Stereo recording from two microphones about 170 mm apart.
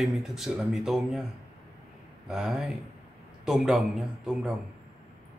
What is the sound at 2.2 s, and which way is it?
Speech, 5° right (ahead or behind).